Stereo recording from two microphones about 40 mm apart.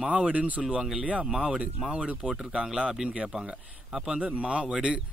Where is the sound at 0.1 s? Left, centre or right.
Right.